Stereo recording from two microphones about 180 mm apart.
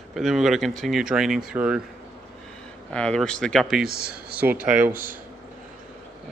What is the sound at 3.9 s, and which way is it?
Speech, 60° right (ahead or behind).